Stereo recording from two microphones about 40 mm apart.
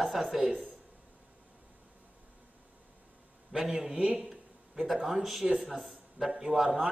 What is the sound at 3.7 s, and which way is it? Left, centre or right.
Speech, right.